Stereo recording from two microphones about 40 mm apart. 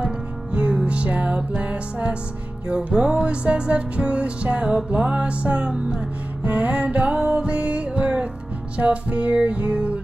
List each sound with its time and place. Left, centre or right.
0.0 s music: right
2.7 s music: centre